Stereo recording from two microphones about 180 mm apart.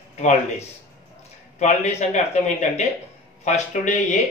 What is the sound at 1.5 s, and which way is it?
Speech, 40° left (ahead or behind).